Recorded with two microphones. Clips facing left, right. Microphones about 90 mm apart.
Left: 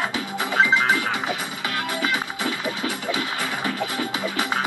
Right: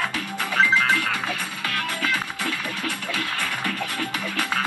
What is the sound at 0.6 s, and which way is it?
Music, 15° left (ahead or behind).